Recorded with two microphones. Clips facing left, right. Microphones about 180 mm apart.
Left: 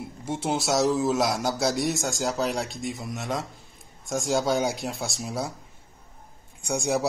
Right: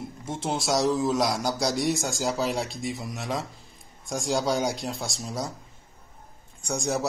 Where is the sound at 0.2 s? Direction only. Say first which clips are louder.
Left 3 dB; 5° left (ahead or behind).